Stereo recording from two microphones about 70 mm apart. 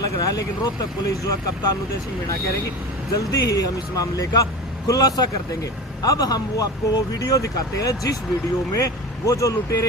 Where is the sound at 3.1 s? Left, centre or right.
Left.